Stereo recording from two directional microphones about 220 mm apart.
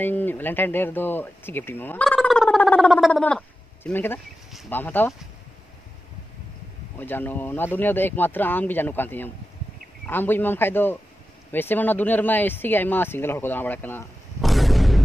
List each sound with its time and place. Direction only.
0.0 s speech: 10° left (ahead or behind)
7.0 s speech: 10° left (ahead or behind)